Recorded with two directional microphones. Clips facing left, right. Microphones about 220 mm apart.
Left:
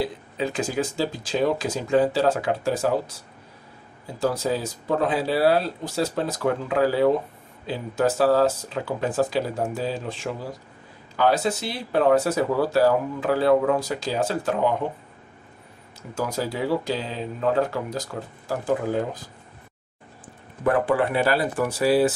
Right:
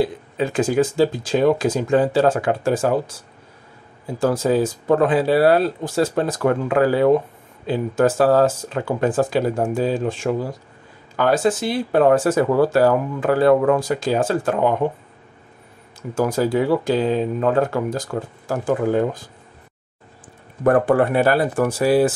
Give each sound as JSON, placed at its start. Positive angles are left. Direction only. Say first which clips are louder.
{"t": 0.4, "sound": "speech", "louder": "right 7 dB", "side_deg": -50}
{"t": 4.2, "sound": "speech", "louder": "right 6 dB", "side_deg": -50}
{"t": 16.2, "sound": "speech", "louder": "right 8 dB", "side_deg": -50}
{"t": 20.6, "sound": "speech", "louder": "right 5 dB", "side_deg": -45}